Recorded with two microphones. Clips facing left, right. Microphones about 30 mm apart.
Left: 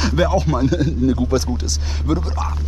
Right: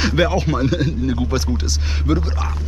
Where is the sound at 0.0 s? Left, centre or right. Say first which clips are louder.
Even; centre.